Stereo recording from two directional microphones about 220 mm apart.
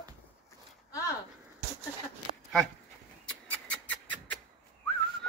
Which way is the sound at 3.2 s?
5° left (ahead or behind).